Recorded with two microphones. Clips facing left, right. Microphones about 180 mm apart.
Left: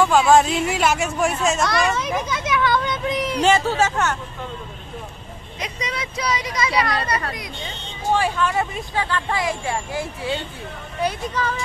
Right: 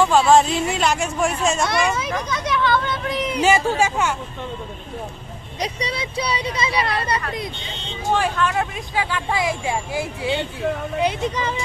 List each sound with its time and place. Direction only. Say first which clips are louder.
0.0 s speech: even; centre (ahead or behind); by 3.2 s 15° left (ahead or behind)
3.3 s speech: right 1 dB; 10° right (ahead or behind)
5.6 s speech: right 3 dB; 35° right (ahead or behind)
8.1 s speech: even; 10° left (ahead or behind)
8.9 s speech: right 1 dB; 10° right (ahead or behind)